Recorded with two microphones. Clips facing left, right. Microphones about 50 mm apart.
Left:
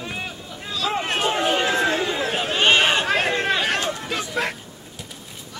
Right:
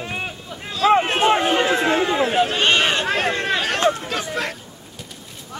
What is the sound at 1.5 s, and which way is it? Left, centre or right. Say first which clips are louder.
Speech: right 3 dB; right.